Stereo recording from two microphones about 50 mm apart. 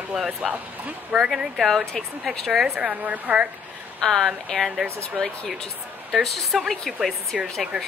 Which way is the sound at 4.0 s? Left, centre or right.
Centre.